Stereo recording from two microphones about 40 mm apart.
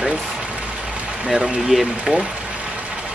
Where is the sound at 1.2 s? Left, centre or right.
Centre.